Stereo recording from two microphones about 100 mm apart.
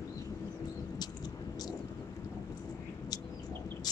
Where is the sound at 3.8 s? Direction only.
45° left (ahead or behind).